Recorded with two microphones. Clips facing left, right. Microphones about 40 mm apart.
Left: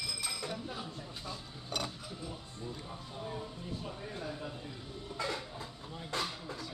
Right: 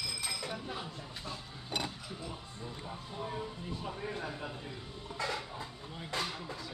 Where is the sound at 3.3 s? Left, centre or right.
Right.